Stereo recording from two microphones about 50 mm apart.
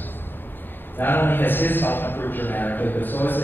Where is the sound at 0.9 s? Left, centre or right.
Left.